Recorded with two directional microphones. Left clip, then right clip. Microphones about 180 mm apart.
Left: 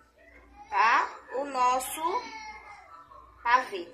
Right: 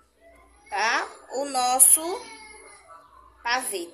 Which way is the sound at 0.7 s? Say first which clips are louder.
Left 1 dB; 90° right.